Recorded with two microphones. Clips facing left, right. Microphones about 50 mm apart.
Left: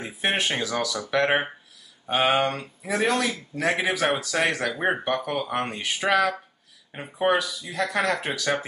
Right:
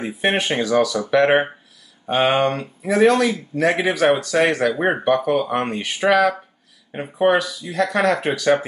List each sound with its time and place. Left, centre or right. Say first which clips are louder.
0.0 s speech: right 5 dB; centre
4.7 s speech: right 5 dB; centre
5.0 s speech: right 8 dB; centre
7.2 s speech: right 5 dB; centre